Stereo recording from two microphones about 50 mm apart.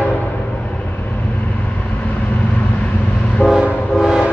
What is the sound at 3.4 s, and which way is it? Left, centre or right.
Train, left.